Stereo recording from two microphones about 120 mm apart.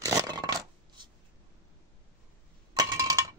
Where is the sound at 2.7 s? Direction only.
30° right (ahead or behind).